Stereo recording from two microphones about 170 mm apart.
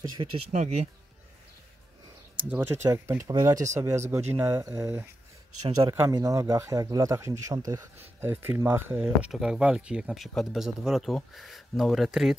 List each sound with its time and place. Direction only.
0.5 s speech: 45° right (ahead or behind)
2.5 s speech: 15° right (ahead or behind)